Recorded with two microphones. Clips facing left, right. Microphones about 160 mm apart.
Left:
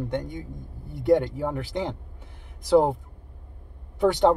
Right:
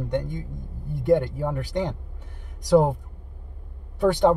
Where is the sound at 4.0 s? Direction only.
15° left (ahead or behind).